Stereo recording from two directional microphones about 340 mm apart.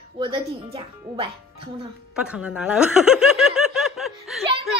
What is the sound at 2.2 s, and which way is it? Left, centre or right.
Speech, centre.